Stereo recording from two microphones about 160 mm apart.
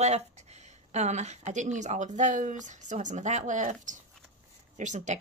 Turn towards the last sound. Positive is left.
turn(degrees=-50)  # may be behind; listen again after turning